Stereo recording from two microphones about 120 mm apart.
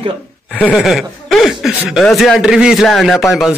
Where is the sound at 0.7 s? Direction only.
Centre (ahead or behind).